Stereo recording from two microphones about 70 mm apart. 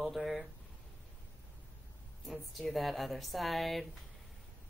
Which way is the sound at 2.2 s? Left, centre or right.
Centre.